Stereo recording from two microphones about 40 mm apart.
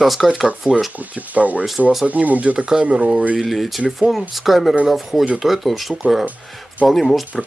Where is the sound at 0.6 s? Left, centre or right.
Right.